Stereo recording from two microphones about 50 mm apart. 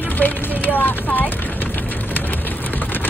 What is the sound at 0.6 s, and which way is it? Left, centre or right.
Vehicle, left.